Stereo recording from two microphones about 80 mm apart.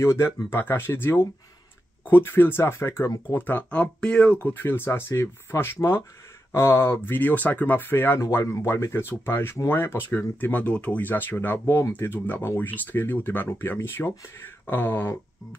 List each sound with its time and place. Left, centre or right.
0.0 s speech: left
7.2 s speech: left